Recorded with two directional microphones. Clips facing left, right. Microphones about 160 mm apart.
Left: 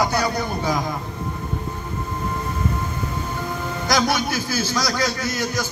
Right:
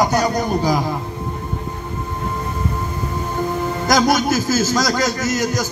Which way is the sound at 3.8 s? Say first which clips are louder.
Right 5 dB; 45° right (ahead or behind).